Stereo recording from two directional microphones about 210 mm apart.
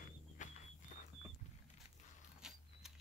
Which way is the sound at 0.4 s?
35° left (ahead or behind).